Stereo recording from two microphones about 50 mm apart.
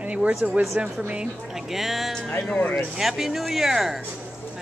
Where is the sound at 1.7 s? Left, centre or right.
Centre.